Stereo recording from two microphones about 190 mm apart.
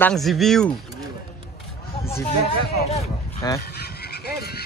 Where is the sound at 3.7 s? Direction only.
55° left (ahead or behind).